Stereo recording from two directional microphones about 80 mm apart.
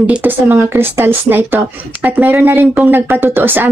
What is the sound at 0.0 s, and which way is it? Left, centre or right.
Speech, right.